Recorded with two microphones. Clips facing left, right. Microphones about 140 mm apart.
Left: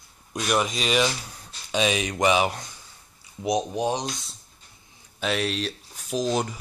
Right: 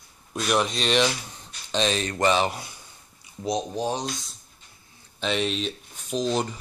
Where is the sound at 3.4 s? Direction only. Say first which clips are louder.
Left 2 dB; 15° left (ahead or behind).